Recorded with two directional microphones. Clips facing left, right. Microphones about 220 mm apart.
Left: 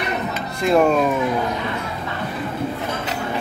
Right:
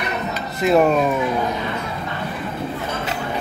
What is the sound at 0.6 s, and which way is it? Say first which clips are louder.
Speech: right 1 dB; 5° right (ahead or behind).